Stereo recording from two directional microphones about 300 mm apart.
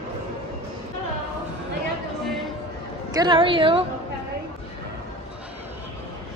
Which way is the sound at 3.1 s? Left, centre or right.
Centre.